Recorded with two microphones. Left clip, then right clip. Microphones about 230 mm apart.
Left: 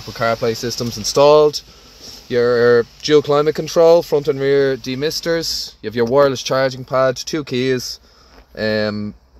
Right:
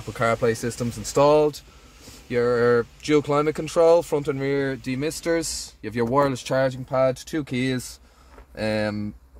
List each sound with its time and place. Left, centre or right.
0.1 s speech: centre